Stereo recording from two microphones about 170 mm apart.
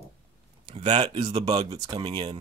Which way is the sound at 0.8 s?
30° right (ahead or behind).